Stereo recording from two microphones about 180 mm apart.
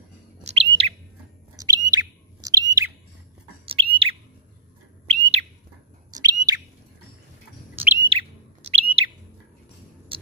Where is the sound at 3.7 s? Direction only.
30° right (ahead or behind).